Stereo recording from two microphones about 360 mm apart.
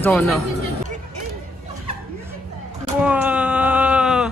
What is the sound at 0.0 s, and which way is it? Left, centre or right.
Speech, centre.